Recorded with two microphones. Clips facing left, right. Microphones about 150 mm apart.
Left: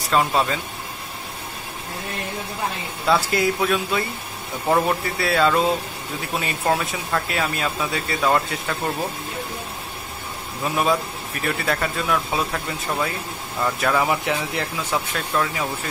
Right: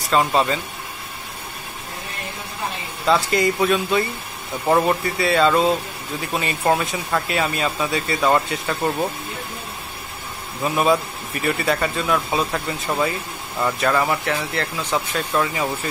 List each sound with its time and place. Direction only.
0.1 s speech: centre (ahead or behind)
3.1 s speech: centre (ahead or behind)
10.6 s speech: 5° right (ahead or behind)
14.0 s speech: 10° left (ahead or behind)
15.1 s speech: 5° right (ahead or behind)